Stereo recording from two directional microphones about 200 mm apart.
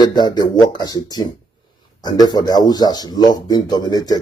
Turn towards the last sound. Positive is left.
turn(degrees=20)  # may be behind; listen again after turning